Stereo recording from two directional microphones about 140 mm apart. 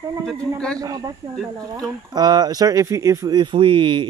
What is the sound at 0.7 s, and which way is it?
Speech, 25° right (ahead or behind).